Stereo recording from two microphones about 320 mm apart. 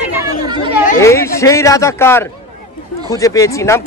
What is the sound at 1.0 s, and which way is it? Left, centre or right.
Speech, centre.